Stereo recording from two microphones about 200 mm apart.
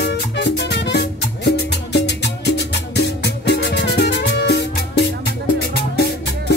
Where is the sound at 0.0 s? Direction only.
60° left (ahead or behind).